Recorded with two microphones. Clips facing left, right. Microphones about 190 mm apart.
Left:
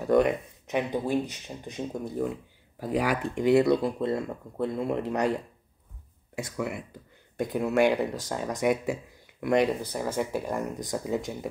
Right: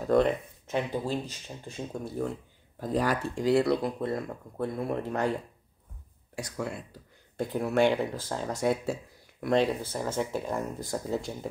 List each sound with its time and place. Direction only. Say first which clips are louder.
0.0 s speech: left 1 dB; 15° left (ahead or behind)
6.3 s speech: left 3 dB; 20° left (ahead or behind)